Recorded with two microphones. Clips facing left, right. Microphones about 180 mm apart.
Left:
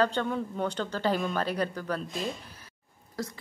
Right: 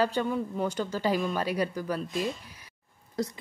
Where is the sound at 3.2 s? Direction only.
20° right (ahead or behind).